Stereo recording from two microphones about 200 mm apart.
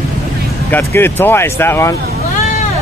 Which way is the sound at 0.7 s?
10° left (ahead or behind).